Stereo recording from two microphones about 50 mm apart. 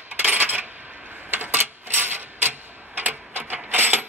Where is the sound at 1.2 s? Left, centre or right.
Right.